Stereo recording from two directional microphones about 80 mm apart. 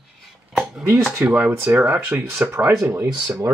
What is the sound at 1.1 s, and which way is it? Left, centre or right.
Speech, centre.